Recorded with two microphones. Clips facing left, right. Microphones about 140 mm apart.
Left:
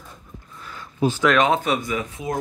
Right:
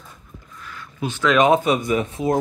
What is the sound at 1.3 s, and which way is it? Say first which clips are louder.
Speech: right 3 dB; 15° right (ahead or behind).